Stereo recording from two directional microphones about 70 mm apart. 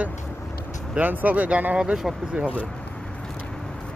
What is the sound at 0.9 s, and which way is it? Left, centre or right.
Speech, right.